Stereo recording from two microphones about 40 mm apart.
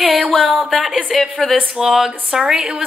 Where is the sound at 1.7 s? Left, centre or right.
Centre.